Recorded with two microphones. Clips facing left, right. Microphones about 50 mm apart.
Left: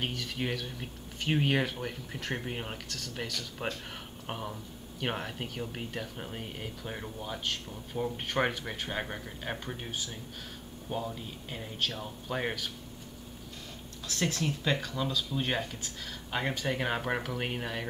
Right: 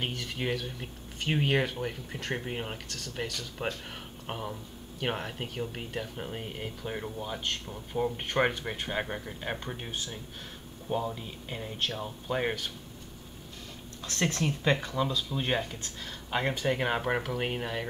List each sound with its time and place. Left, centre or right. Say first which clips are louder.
0.0 s speech: right 1 dB; centre
14.4 s speech: right 3 dB; centre